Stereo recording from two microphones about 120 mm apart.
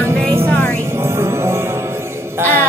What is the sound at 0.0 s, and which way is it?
Music, 20° right (ahead or behind).